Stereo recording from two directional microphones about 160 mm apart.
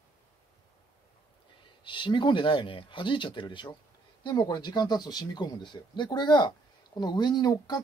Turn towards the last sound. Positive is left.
turn(degrees=25)  # may be behind; listen again after turning